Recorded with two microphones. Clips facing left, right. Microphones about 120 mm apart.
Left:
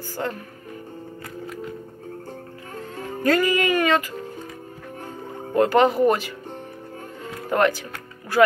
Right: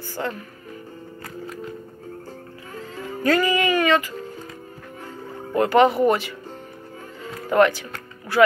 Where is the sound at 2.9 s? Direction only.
50° left (ahead or behind).